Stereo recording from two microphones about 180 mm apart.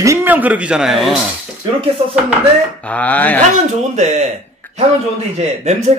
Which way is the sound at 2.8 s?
10° left (ahead or behind).